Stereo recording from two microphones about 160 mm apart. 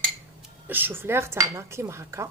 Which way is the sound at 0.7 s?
15° right (ahead or behind).